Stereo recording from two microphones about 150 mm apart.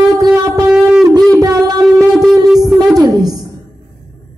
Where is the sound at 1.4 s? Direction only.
20° right (ahead or behind).